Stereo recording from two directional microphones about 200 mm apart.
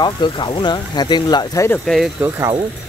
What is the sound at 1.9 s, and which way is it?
Speech, 5° right (ahead or behind).